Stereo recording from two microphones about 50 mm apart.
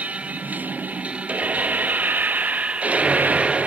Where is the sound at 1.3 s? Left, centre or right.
Right.